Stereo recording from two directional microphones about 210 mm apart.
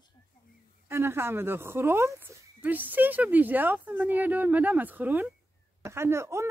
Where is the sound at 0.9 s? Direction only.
10° right (ahead or behind).